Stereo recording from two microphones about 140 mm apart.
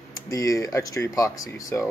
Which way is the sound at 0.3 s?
25° left (ahead or behind).